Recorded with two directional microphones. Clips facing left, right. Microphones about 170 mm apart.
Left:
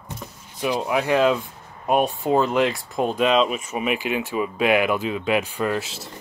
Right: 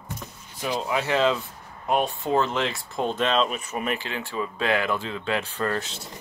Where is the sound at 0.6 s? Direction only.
15° left (ahead or behind).